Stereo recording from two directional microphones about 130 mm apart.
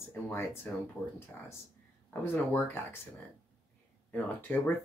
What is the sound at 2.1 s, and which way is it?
Speech, 15° left (ahead or behind).